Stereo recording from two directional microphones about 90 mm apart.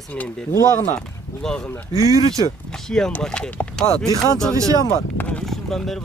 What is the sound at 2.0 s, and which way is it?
Speech, 40° right (ahead or behind).